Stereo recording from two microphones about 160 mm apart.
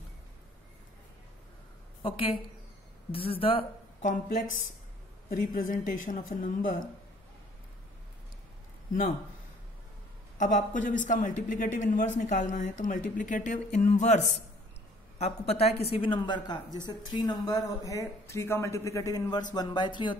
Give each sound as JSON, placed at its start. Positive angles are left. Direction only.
{"t": 2.0, "sound": "speech", "side_deg": 35}
{"t": 4.0, "sound": "a man's voice", "side_deg": 50}
{"t": 10.3, "sound": "a man's voice", "side_deg": 50}